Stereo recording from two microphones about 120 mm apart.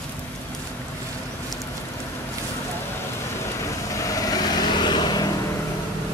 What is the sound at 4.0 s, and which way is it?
Vehicle, 30° left (ahead or behind).